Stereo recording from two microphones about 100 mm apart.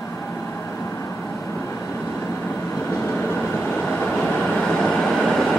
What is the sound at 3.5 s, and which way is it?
Vehicle, 5° left (ahead or behind).